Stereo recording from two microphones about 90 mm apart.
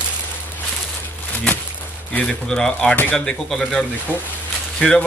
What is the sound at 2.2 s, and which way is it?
A man's voice, 10° left (ahead or behind).